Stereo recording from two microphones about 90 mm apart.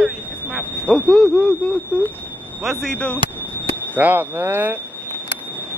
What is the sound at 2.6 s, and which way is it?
Speech, centre (ahead or behind).